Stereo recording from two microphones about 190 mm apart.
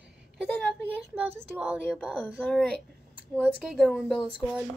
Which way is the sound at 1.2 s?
5° right (ahead or behind).